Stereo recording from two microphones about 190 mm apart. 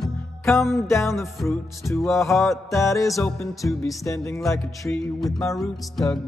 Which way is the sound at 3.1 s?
Centre (ahead or behind).